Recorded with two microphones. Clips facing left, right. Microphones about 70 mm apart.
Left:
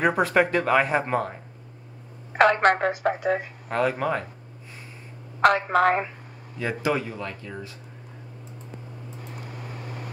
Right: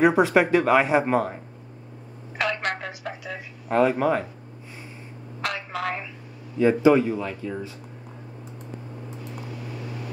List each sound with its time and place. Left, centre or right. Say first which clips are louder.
0.0 s speech: right 3 dB; centre
2.3 s a woman's voice: left 9 dB; left
3.6 s speech: right 5 dB; centre
5.4 s a woman's voice: left 11 dB; left
6.6 s speech: right 10 dB; centre
6.9 s speech: right 8 dB; centre